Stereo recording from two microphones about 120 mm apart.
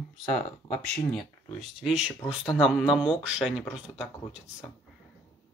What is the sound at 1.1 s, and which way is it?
Speech, 5° right (ahead or behind).